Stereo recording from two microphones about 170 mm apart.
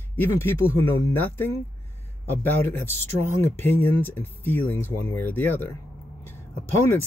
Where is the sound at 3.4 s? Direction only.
10° left (ahead or behind).